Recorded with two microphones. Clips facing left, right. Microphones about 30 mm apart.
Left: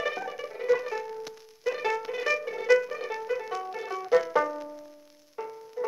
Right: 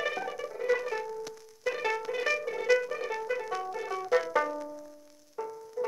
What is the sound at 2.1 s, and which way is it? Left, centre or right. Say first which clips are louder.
Music: left 1 dB; centre.